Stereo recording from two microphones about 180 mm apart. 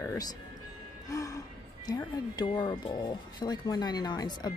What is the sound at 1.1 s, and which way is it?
Music, 20° left (ahead or behind).